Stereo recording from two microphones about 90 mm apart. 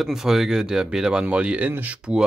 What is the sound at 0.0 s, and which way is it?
Speech, 5° right (ahead or behind).